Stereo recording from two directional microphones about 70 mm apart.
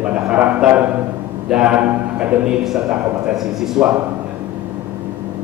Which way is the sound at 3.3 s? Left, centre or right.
Centre.